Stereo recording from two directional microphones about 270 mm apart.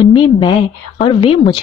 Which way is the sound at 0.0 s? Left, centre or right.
Centre.